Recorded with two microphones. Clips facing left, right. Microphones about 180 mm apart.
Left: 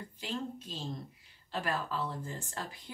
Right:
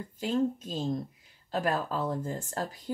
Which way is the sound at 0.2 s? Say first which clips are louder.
Right 11 dB; 45° right (ahead or behind).